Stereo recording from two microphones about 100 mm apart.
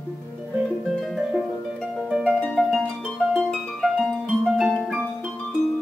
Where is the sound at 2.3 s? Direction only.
5° left (ahead or behind).